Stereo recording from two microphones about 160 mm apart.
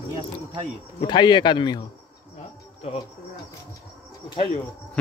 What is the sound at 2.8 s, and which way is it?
Speech, 40° left (ahead or behind).